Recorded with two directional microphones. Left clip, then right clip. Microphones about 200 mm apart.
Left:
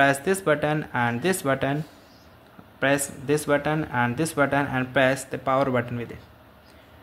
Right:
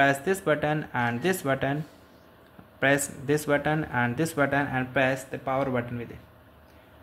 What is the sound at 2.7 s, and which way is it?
Speech, centre (ahead or behind).